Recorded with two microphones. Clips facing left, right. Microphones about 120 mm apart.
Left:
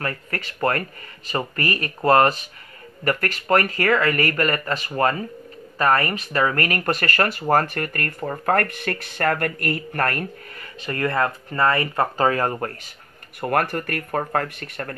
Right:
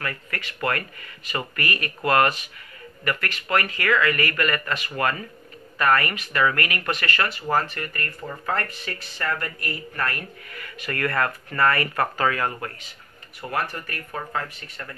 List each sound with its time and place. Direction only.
0.0 s speech: 35° left (ahead or behind)
10.5 s speech: 30° left (ahead or behind)
13.4 s speech: 55° left (ahead or behind)